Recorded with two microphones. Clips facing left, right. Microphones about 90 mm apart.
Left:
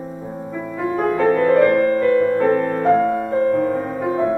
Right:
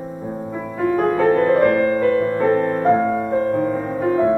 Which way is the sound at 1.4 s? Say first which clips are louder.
Left 4 dB; 10° right (ahead or behind).